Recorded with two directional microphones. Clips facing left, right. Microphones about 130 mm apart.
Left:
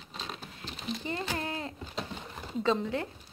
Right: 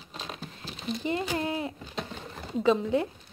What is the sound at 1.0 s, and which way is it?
Speech, 20° right (ahead or behind).